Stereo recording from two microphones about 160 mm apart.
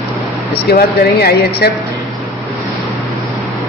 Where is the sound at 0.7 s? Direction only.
80° left.